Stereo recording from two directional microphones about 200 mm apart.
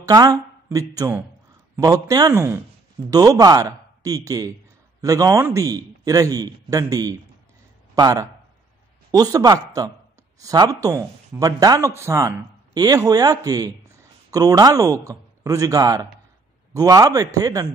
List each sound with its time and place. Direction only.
0.0 s a man's voice: 20° right (ahead or behind)